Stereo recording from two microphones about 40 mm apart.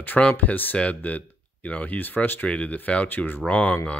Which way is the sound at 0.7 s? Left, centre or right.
Left.